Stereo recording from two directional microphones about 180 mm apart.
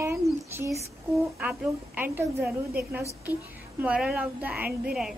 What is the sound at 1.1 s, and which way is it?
A woman's voice, 5° right (ahead or behind).